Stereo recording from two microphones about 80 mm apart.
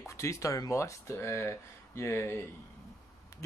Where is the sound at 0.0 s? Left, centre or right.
Left.